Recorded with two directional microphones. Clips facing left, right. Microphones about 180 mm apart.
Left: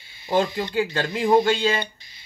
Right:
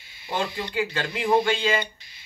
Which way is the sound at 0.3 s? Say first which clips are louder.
Left 6 dB; 40° left (ahead or behind).